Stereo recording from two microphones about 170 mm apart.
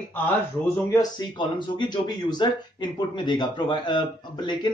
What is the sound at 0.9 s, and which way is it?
Speech, 25° left (ahead or behind).